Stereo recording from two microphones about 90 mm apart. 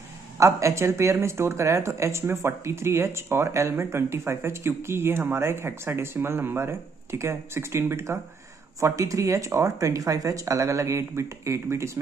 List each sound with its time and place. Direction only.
0.4 s speech: 35° right (ahead or behind)